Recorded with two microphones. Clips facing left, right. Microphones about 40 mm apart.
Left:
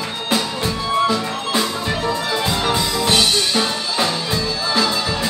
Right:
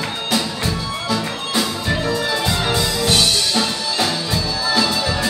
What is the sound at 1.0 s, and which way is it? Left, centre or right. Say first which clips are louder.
Music: left 2 dB; left.